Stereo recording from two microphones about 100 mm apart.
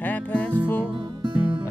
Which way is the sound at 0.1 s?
15° left (ahead or behind).